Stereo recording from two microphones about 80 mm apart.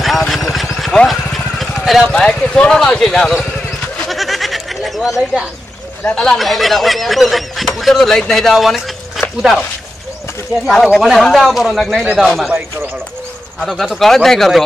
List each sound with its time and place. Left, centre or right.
0.3 s vehicle: centre
2.0 s speech: centre
4.1 s goat: centre
6.0 s speech: centre
10.7 s speech: centre
13.6 s speech: centre